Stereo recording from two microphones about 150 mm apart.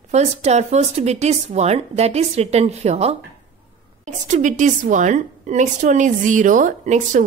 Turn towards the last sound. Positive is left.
turn(degrees=-55)  # may be behind; listen again after turning